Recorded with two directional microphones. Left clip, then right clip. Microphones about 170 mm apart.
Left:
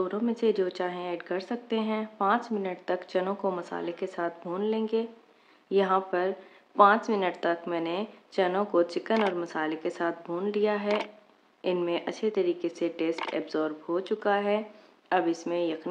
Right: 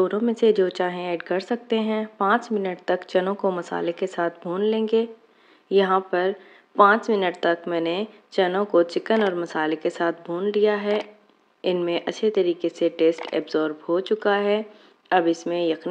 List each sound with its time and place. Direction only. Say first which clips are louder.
0.0 s speech: right 8 dB; 30° right (ahead or behind)